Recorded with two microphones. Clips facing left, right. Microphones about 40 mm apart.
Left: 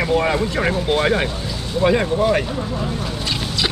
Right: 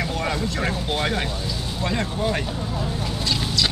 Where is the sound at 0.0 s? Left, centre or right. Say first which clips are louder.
Left 7 dB; left.